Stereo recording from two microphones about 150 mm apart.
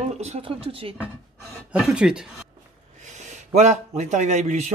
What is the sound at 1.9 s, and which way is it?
Speech, 5° right (ahead or behind).